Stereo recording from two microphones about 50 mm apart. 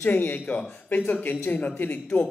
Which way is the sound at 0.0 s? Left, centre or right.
Left.